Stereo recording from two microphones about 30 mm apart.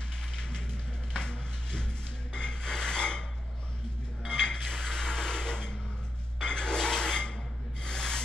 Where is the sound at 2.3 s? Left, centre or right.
Left.